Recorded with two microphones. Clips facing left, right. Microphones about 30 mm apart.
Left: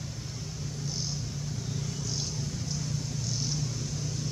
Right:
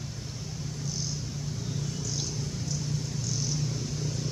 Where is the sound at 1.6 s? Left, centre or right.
Centre.